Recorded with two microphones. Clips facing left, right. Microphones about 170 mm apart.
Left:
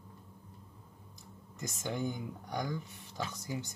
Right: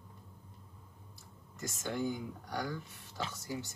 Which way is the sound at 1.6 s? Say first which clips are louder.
Even; 20° left (ahead or behind).